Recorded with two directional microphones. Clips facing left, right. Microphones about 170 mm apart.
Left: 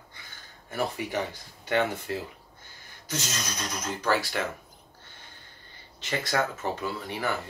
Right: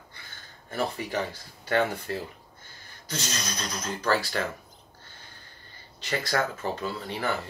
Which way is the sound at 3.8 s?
15° left (ahead or behind).